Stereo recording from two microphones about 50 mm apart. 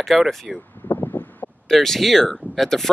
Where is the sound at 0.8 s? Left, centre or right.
Left.